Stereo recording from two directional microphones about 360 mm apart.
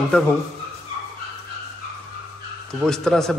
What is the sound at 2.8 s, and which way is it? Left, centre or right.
Speech, centre.